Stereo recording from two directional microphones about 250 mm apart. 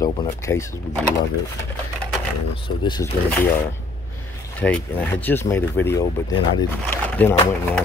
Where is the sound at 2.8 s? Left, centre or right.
Centre.